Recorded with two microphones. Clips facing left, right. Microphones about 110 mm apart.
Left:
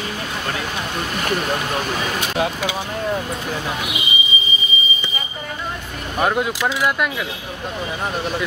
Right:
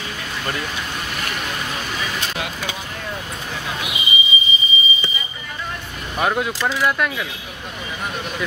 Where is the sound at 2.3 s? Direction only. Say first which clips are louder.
Left 7 dB; 30° left (ahead or behind).